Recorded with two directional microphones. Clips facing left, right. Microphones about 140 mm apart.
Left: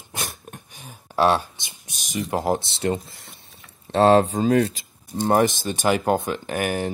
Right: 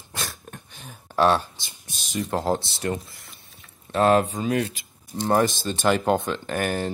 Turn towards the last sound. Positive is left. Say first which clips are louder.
# left 1 dB
turn(degrees=15)  # may be behind; listen again after turning